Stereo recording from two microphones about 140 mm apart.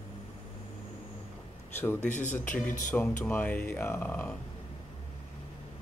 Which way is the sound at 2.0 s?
60° left (ahead or behind).